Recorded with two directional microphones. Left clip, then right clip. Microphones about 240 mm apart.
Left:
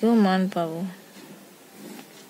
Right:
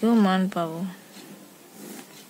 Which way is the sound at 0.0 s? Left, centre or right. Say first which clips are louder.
Left 1 dB; centre.